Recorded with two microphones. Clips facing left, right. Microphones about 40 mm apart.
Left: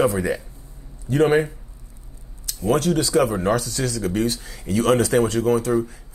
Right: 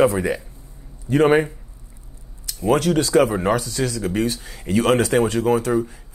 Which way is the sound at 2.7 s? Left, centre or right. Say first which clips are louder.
Right 2 dB; right.